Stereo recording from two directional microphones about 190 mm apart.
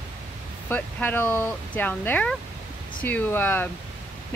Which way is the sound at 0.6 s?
10° left (ahead or behind).